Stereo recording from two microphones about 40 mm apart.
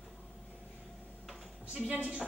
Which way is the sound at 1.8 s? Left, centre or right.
Right.